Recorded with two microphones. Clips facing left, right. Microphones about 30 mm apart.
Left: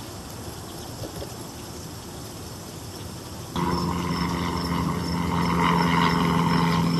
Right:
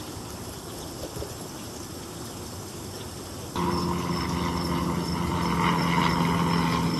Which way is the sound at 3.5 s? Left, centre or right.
Centre.